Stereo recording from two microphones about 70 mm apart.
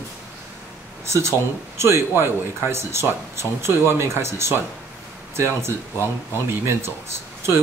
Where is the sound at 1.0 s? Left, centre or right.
Right.